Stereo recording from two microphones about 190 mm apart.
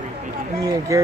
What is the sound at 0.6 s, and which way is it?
Speech, 20° right (ahead or behind).